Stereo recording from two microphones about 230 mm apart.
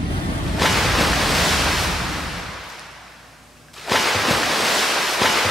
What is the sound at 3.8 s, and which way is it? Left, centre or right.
Waves, centre.